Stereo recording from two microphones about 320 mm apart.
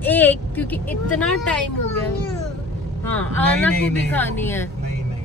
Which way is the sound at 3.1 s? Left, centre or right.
Centre.